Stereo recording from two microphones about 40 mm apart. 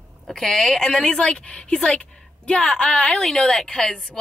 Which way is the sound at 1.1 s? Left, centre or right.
Left.